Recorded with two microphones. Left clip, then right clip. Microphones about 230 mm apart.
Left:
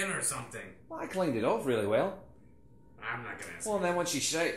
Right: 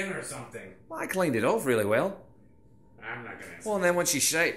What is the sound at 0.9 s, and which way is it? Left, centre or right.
Speech, right.